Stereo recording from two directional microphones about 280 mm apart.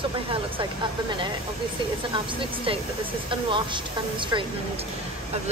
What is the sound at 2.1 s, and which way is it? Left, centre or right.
Speech, centre.